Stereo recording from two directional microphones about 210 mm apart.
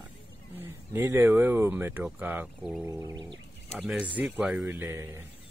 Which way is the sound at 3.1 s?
20° right (ahead or behind).